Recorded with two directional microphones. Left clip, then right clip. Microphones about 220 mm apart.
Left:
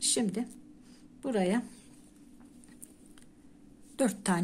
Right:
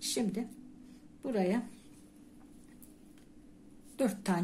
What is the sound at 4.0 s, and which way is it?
Speech, 20° left (ahead or behind).